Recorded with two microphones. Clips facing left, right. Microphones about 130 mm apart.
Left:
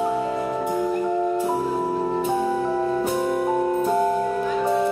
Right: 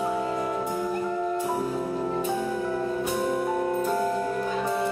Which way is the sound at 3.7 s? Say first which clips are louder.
Left 5 dB; 15° left (ahead or behind).